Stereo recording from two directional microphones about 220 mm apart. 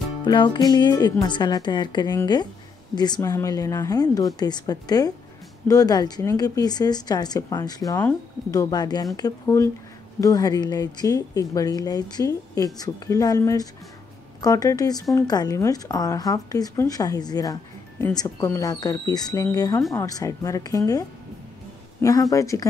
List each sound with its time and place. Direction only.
0.2 s a woman's voice: 20° left (ahead or behind)
22.0 s a woman's voice: 15° left (ahead or behind)